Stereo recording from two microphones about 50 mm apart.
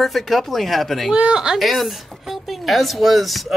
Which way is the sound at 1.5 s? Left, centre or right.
Centre.